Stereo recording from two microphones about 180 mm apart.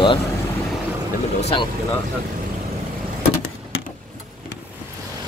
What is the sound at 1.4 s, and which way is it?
Speech, 35° left (ahead or behind).